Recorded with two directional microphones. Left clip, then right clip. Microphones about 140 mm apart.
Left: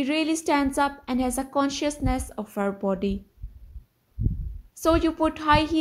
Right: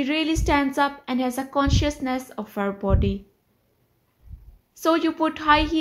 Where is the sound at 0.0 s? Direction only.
40° left (ahead or behind).